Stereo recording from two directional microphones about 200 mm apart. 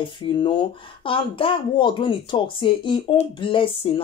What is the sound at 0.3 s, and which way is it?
A woman's voice, 25° left (ahead or behind).